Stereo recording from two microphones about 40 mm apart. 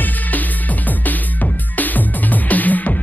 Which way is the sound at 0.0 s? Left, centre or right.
Left.